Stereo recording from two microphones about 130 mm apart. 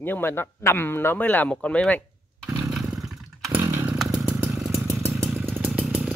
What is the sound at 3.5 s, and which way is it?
Chainsaw, 15° right (ahead or behind).